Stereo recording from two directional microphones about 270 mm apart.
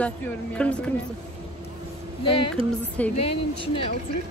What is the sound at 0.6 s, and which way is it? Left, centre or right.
Speech, centre.